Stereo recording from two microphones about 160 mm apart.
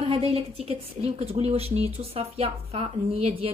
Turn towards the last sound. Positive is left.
turn(degrees=-40)  # may be behind; listen again after turning